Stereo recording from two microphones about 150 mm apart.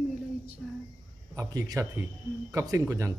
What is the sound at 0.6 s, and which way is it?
Speech, 5° right (ahead or behind).